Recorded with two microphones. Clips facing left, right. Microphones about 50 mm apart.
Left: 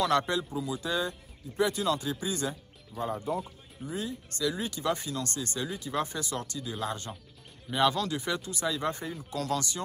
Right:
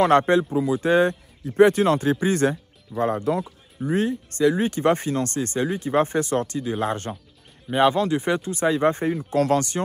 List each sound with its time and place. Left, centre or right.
0.0 s speech: right